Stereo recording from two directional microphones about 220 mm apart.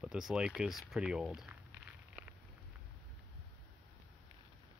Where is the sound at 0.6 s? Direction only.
Centre (ahead or behind).